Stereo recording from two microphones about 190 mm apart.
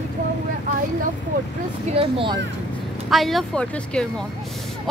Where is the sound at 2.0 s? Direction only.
30° right (ahead or behind).